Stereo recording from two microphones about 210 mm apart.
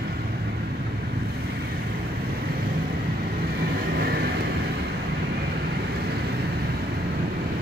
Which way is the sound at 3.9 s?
45° right (ahead or behind).